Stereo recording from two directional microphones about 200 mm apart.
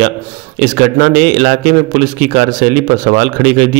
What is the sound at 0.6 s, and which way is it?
A man's voice, 45° right (ahead or behind).